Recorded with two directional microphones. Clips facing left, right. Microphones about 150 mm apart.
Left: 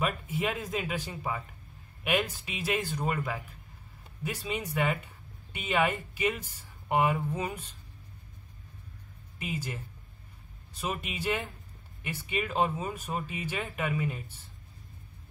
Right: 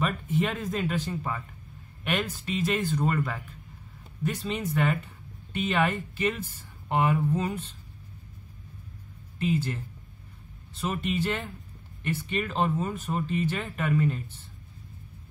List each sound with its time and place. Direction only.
0.0 s speech: 10° left (ahead or behind)
9.4 s speech: 10° left (ahead or behind)